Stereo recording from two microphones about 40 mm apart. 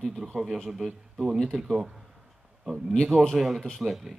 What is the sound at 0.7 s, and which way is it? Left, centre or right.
A man's voice, centre.